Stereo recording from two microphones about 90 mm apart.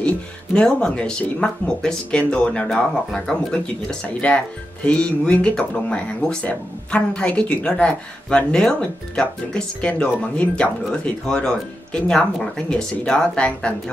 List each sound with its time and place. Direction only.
0.6 s speech: 10° left (ahead or behind)